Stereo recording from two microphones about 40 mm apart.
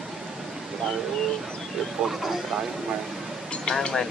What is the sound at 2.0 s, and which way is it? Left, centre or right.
Speech, centre.